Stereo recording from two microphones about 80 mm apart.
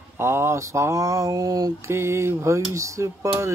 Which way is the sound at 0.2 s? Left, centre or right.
Right.